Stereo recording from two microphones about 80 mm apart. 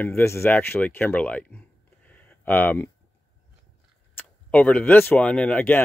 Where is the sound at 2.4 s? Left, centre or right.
Left.